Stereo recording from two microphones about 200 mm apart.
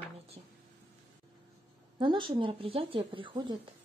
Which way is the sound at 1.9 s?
25° right (ahead or behind).